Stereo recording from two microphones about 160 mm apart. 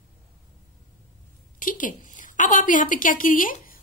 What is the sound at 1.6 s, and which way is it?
A woman's voice, 55° left (ahead or behind).